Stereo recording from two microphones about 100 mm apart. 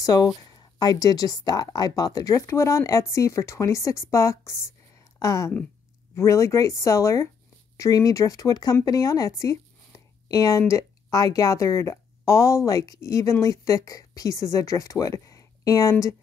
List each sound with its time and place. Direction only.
0.0 s speech: 35° left (ahead or behind)